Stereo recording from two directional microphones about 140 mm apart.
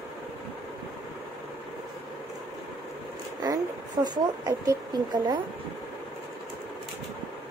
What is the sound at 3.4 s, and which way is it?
Speech, 30° right (ahead or behind).